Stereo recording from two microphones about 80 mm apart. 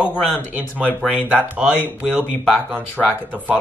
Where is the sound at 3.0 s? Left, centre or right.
Centre.